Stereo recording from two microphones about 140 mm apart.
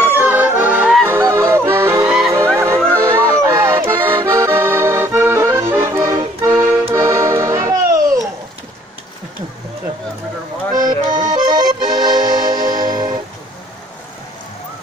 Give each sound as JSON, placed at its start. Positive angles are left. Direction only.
{"t": 0.0, "sound": "music", "side_deg": -15}
{"t": 1.0, "sound": "yodeling", "side_deg": -20}
{"t": 2.3, "sound": "music", "side_deg": -15}
{"t": 3.0, "sound": "accordion", "side_deg": -20}
{"t": 6.1, "sound": "music", "side_deg": -20}
{"t": 10.7, "sound": "accordion", "side_deg": -30}